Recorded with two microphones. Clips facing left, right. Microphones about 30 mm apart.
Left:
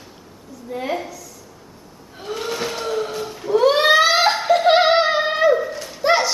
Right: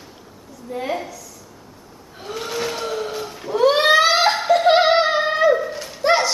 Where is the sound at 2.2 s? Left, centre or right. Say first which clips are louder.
Left 1 dB; centre.